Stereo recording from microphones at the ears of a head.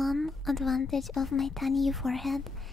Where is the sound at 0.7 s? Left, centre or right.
Left.